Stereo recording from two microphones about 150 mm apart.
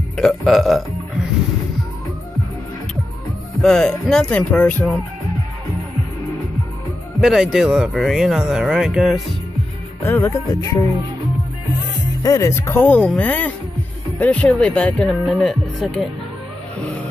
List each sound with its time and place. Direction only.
0.2 s burping: centre (ahead or behind)
3.6 s speech: 5° left (ahead or behind)
7.2 s speech: 5° right (ahead or behind)
10.0 s music: 15° left (ahead or behind)
12.2 s speech: 20° left (ahead or behind); by 15.5 s centre (ahead or behind)